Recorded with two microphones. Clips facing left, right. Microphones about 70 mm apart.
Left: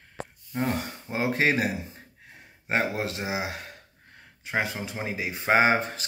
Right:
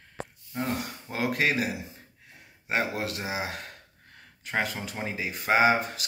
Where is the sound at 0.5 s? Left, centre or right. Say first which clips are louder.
Left 3 dB; left.